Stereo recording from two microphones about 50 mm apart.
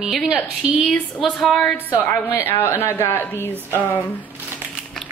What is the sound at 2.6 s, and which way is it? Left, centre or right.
Speech, left.